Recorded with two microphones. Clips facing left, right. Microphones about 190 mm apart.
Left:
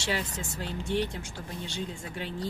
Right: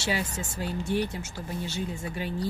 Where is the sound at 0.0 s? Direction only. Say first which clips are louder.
Right 2 dB; 10° right (ahead or behind).